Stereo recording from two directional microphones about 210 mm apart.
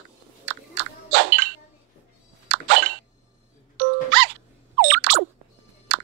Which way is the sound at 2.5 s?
65° right (ahead or behind).